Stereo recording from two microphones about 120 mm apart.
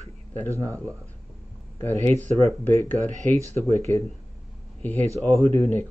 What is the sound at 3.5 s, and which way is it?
Speech, 20° left (ahead or behind).